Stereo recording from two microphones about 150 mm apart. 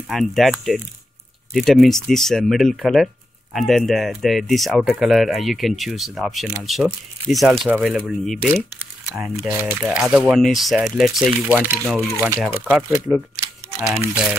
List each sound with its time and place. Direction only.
0.1 s speech: centre (ahead or behind)
11.2 s speech: 15° right (ahead or behind)